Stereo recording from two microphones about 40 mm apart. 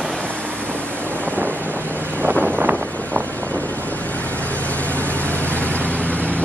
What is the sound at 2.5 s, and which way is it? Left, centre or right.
Wind noise, right.